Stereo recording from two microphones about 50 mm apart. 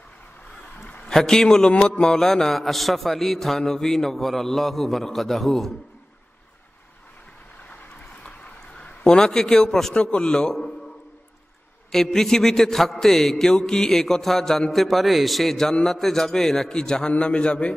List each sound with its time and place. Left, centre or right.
1.0 s a man's voice: centre
8.2 s a sound: centre
9.9 s mantra: centre
11.9 s mantra: centre
14.7 s a man's voice: centre
15.9 s mantra: centre
17.1 s a man's voice: left